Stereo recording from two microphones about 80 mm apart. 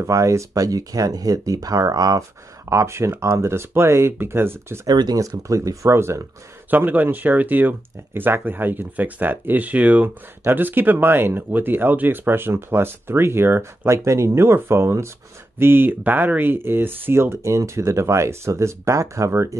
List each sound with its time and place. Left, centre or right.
0.0 s speech: right
2.7 s speech: right
4.8 s speech: right
6.7 s speech: right